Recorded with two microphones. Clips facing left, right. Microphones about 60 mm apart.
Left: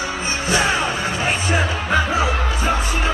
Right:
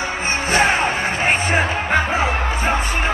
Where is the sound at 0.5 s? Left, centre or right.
Right.